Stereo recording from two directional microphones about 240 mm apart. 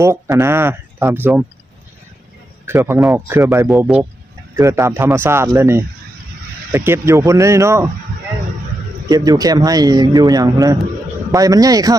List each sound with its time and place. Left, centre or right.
0.0 s speech: centre
2.6 s speech: centre
9.1 s speech: centre